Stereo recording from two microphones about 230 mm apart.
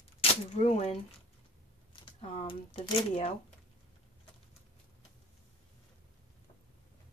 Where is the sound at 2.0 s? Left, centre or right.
Left.